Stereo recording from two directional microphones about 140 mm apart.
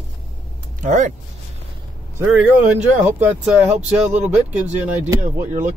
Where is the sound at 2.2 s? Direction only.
10° right (ahead or behind).